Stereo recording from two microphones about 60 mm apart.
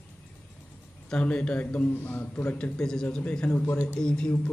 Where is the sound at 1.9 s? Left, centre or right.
Left; by 4.3 s centre.